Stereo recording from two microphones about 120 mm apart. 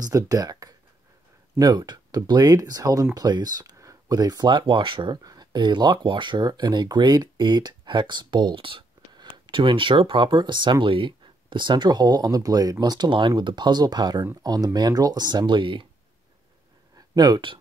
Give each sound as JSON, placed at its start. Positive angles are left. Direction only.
{"t": 0.0, "sound": "speech", "side_deg": -30}
{"t": 17.1, "sound": "speech", "side_deg": -35}